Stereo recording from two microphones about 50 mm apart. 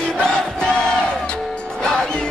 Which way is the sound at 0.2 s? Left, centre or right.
Centre.